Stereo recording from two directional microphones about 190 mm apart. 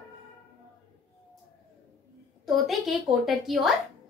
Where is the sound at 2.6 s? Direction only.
Centre (ahead or behind).